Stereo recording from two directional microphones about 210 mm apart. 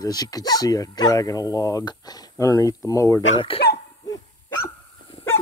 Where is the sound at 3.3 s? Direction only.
25° left (ahead or behind).